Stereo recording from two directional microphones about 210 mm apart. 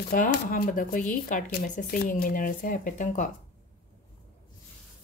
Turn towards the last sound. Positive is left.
turn(degrees=35)  # may be behind; listen again after turning